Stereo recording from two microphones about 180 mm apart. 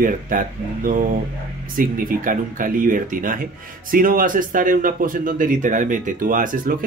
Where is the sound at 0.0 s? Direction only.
50° right (ahead or behind).